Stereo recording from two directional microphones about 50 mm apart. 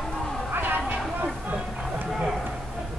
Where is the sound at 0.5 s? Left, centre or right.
Right.